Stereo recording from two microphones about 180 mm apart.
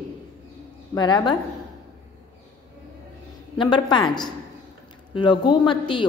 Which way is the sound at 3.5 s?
25° left (ahead or behind).